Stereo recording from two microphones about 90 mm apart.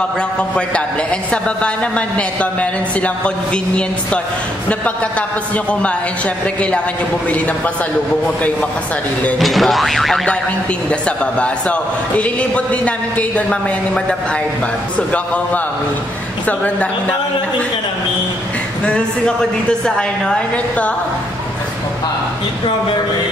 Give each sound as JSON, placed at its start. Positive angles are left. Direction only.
{"t": 0.4, "sound": "a man's voice", "side_deg": 15}
{"t": 5.7, "sound": "a man's voice", "side_deg": 15}
{"t": 9.4, "sound": "boing", "side_deg": 0}
{"t": 10.9, "sound": "a man's voice", "side_deg": 15}
{"t": 15.1, "sound": "a man's voice", "side_deg": 15}
{"t": 18.9, "sound": "a man's voice", "side_deg": 10}